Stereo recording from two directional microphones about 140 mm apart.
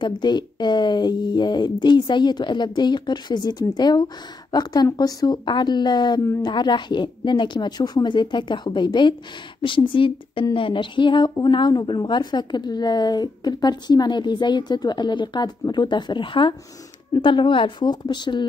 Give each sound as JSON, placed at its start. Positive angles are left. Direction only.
{"t": 0.0, "sound": "speech", "side_deg": 30}